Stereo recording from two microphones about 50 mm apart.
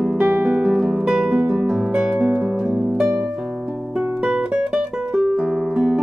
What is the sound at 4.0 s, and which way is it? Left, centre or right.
Music, right.